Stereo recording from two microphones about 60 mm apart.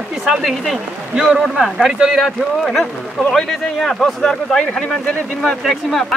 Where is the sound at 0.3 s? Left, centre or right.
Centre.